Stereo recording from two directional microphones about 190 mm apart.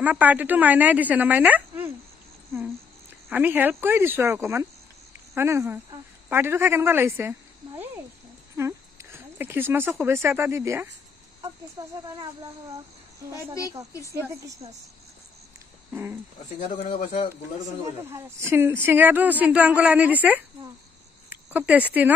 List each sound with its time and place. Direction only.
0.0 s speech: 10° right (ahead or behind)
3.3 s speech: 10° right (ahead or behind)
8.5 s a sound: 15° right (ahead or behind)
10.0 s speech: 10° right (ahead or behind)
13.4 s speech: 15° left (ahead or behind)
14.1 s speech: 15° right (ahead or behind)
15.9 s speech: 10° right (ahead or behind)
16.8 s speech: 30° left (ahead or behind)
18.1 s speech: 15° right (ahead or behind)